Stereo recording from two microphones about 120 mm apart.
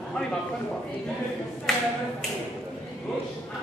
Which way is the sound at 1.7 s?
5° left (ahead or behind).